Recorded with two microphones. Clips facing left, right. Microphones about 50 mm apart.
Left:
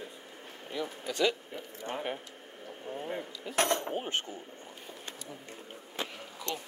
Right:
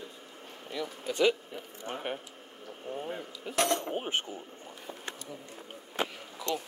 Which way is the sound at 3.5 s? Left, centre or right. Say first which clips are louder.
Even; left.